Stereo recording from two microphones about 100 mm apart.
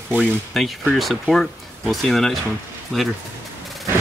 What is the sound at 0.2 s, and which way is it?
Speech, centre (ahead or behind).